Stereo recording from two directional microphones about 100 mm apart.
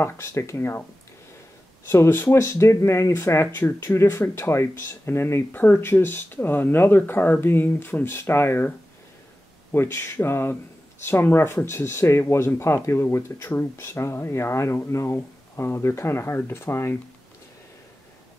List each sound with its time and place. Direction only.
0.0 s speech: 30° left (ahead or behind)
1.9 s speech: 25° left (ahead or behind)